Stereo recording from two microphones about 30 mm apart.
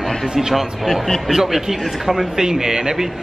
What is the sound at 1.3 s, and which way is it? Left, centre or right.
A man's voice, centre.